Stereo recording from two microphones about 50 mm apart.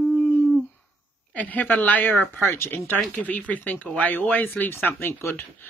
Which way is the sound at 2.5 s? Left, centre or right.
Left.